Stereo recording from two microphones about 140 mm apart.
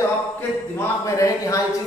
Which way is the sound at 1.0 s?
25° left (ahead or behind).